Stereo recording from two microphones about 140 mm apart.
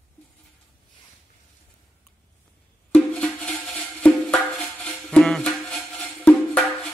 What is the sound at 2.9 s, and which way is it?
Music, 5° left (ahead or behind).